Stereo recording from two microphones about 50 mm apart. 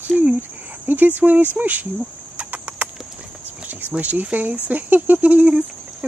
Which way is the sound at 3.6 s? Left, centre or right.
Right.